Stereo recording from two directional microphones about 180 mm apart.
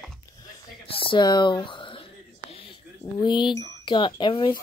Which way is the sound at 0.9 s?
30° left (ahead or behind).